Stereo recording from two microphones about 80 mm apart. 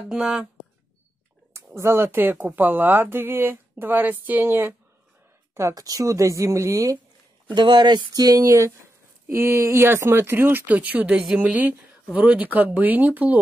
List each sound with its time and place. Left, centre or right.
0.1 s speech: centre
1.8 s speech: right
5.8 s speech: right
7.5 s speech: right